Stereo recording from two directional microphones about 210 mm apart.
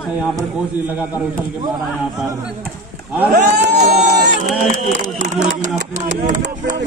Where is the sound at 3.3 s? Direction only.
35° right (ahead or behind).